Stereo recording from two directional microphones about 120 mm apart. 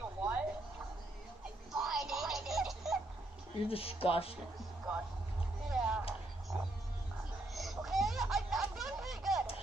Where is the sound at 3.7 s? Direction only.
55° left (ahead or behind).